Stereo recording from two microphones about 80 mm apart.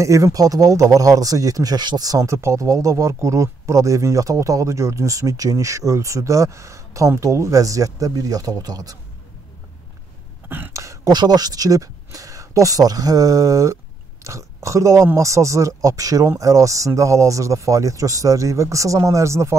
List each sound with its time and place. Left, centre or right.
0.0 s speech: right
10.7 s a sound: right
11.1 s speech: right